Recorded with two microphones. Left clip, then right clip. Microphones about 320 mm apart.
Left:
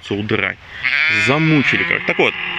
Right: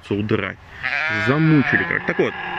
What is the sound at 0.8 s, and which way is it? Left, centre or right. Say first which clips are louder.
Speech: left 6 dB; right.